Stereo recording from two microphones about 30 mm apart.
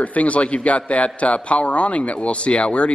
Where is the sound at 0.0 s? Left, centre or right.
Left.